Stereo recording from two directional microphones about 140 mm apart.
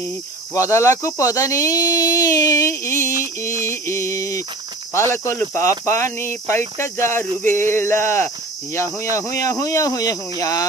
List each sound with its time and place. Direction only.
0.6 s speech: 20° left (ahead or behind)
3.7 s music: 20° left (ahead or behind)
4.9 s speech: 20° left (ahead or behind)